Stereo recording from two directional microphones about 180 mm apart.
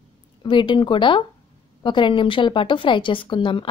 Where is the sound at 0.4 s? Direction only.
25° left (ahead or behind).